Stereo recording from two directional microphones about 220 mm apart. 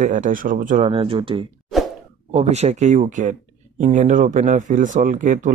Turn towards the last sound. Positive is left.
turn(degrees=-35)  # may be behind; listen again after turning